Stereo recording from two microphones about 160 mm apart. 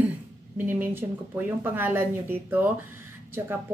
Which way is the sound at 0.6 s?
10° right (ahead or behind).